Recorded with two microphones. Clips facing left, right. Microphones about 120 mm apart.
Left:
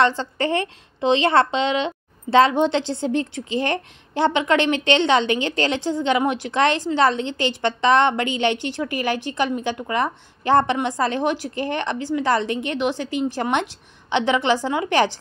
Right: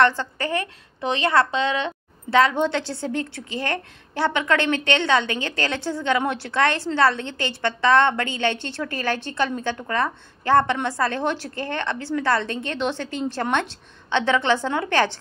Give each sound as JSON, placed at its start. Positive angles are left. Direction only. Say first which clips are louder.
{"t": 0.0, "sound": "a woman's voice", "louder": "even", "side_deg": 20}